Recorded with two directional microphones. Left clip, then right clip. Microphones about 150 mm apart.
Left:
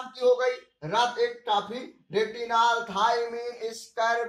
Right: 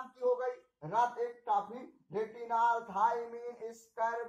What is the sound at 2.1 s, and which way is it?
Speech, 15° right (ahead or behind).